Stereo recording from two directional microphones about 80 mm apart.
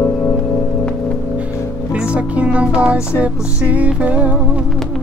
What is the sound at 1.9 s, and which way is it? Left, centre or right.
Music, centre.